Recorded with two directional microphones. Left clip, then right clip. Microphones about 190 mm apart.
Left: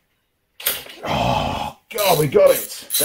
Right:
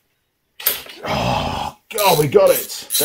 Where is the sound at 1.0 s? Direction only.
30° right (ahead or behind).